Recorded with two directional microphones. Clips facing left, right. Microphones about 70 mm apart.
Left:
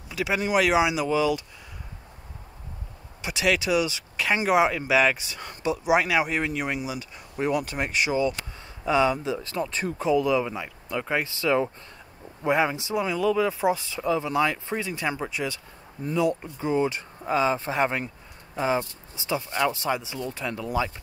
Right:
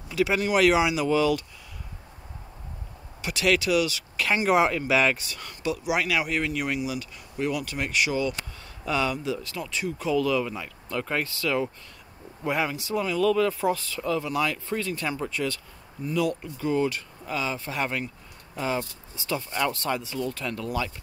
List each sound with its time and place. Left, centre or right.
0.1 s speech: centre
3.2 s speech: centre
4.3 s speech: centre
5.4 s speech: left
10.0 s speech: left